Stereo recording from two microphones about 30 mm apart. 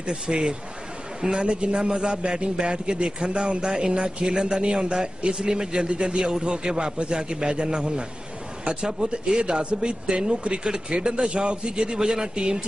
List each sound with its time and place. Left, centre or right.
0.1 s a man's voice: right